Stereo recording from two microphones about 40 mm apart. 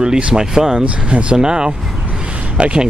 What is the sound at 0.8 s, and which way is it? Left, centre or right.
Speech, right.